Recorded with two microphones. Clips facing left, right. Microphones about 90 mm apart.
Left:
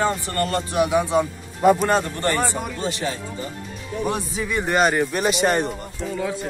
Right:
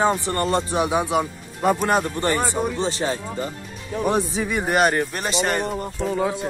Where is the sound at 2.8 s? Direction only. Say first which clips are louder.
Right 2 dB; 30° right (ahead or behind).